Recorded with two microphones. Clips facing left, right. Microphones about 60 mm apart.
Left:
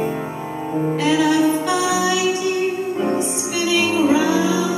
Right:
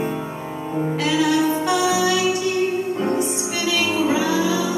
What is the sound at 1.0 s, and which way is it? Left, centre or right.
Music, left.